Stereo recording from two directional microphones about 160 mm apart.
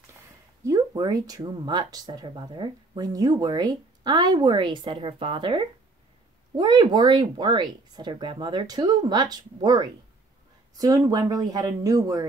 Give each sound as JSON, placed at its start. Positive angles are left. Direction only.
{"t": 0.7, "sound": "speech", "side_deg": -25}